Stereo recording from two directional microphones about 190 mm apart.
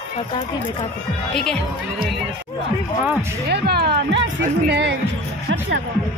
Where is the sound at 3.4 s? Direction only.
55° right (ahead or behind).